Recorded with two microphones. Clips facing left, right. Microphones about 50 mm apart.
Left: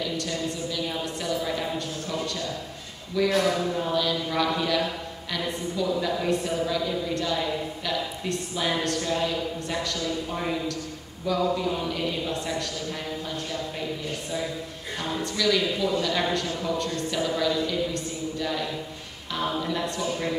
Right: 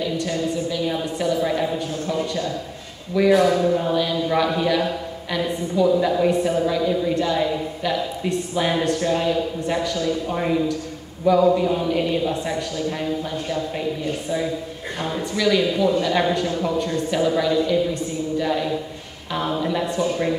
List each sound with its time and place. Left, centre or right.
0.7 s a woman's voice: centre
3.2 s a woman's voice: centre
15.0 s a man's voice: centre
19.5 s a woman's voice: centre